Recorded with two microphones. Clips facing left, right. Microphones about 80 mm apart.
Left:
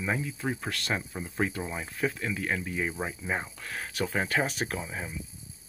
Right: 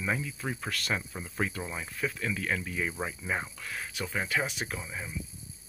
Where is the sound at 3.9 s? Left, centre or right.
Left.